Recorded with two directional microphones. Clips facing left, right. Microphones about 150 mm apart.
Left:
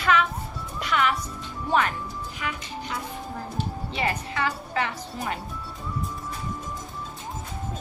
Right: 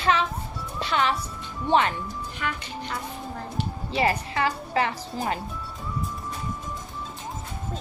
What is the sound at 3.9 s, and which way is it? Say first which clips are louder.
A woman's voice: right 5 dB; 35° right (ahead or behind).